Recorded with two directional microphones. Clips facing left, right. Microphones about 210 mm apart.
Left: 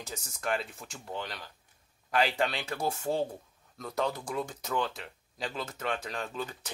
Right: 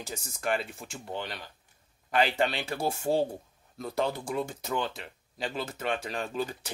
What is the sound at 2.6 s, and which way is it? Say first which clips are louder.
Speech: right 2 dB; 30° right (ahead or behind).